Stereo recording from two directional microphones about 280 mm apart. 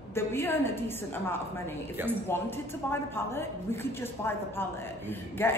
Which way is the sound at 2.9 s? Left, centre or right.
Centre.